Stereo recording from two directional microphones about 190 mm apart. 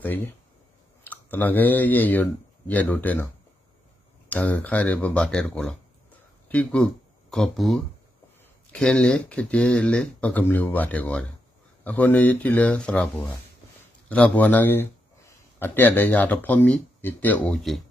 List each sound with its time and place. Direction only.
0.0 s speech: 10° left (ahead or behind)
4.3 s a man's voice: 10° left (ahead or behind)